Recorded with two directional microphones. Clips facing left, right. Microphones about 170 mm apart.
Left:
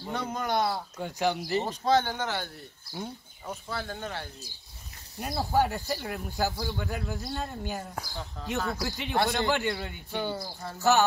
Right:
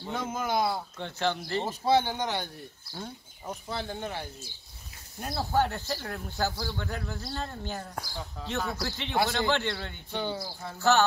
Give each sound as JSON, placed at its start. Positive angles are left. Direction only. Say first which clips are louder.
{"t": 0.1, "sound": "speech", "louder": "even", "side_deg": -5}
{"t": 1.0, "sound": "speech", "louder": "left 2 dB", "side_deg": 15}
{"t": 1.7, "sound": "speech", "louder": "right 2 dB", "side_deg": -10}
{"t": 3.6, "sound": "speech", "louder": "right 1 dB", "side_deg": -20}
{"t": 5.2, "sound": "speech", "louder": "left 1 dB", "side_deg": 10}
{"t": 10.8, "sound": "speech", "louder": "even", "side_deg": 15}